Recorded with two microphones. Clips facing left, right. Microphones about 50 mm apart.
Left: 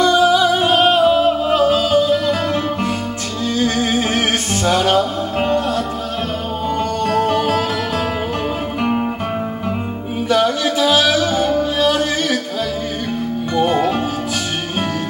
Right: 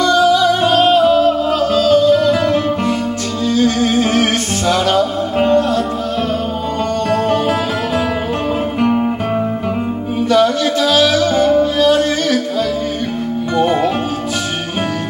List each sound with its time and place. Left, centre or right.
0.0 s music: centre
2.1 s music: centre
3.5 s music: left
5.4 s music: centre
8.8 s music: centre
10.3 s music: centre
13.7 s music: centre